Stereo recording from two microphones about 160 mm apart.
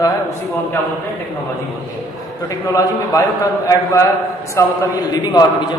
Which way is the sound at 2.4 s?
20° left (ahead or behind).